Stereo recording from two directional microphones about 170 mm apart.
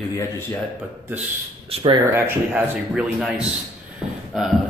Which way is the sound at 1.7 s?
35° right (ahead or behind).